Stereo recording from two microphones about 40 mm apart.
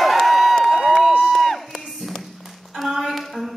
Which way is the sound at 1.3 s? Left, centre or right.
Centre.